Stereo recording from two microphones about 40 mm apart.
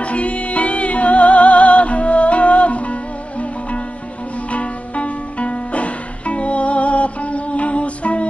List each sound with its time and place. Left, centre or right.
0.0 s music: left